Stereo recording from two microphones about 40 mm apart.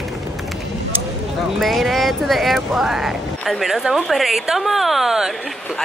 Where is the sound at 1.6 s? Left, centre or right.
Centre.